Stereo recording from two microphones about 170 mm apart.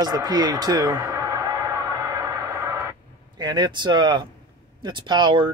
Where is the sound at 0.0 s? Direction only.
25° right (ahead or behind).